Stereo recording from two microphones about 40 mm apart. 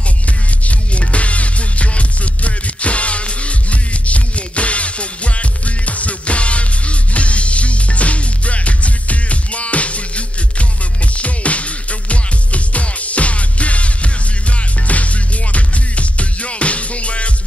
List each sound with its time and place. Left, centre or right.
0.7 s music: left